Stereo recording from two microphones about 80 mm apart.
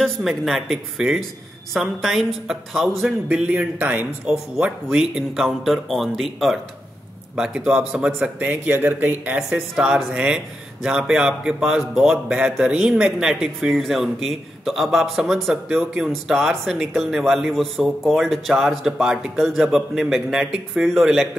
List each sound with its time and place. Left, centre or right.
0.0 s speech: centre; by 4.1 s right
4.3 s speech: centre
9.5 s speech: centre